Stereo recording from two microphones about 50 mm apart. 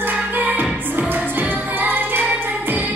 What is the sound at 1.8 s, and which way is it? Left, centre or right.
Music, right.